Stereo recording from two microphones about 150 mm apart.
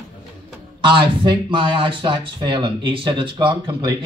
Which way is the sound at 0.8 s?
35° right (ahead or behind).